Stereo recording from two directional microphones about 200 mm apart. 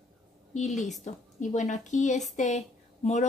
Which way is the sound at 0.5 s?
35° left (ahead or behind).